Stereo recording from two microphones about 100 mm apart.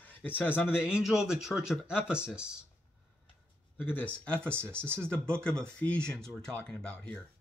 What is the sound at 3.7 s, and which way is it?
Speech, 20° left (ahead or behind).